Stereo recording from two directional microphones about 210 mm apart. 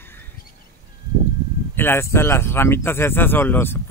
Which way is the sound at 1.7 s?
10° left (ahead or behind).